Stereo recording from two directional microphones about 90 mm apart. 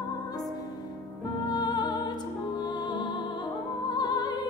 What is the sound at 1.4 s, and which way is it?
Music, 50° left (ahead or behind).